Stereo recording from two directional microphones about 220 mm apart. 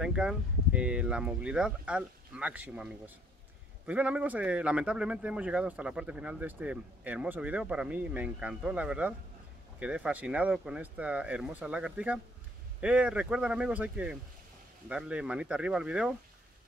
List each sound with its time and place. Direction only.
0.0 s a man's voice: 5° right (ahead or behind)